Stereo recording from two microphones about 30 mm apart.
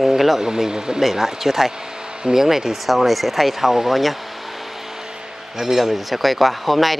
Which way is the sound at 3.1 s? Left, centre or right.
Centre.